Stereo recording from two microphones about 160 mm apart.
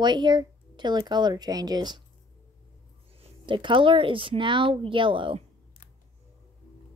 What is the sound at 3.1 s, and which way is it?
Speech, 35° right (ahead or behind).